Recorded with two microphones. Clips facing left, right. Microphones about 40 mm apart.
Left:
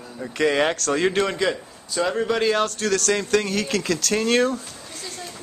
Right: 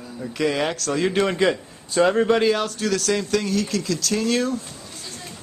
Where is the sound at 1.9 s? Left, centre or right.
Right.